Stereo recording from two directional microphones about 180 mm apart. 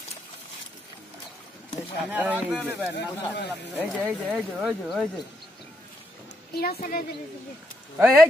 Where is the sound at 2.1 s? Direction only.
10° right (ahead or behind).